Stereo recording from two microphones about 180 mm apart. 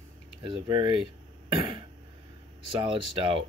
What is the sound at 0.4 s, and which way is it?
Speech, 30° right (ahead or behind).